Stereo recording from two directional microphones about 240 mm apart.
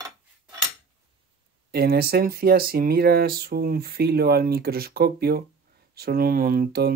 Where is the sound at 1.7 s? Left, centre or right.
Right.